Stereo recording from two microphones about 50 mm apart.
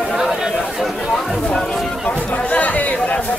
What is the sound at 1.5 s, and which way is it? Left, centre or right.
Speech, centre.